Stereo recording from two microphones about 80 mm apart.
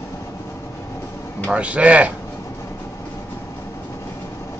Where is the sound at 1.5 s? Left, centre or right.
Centre.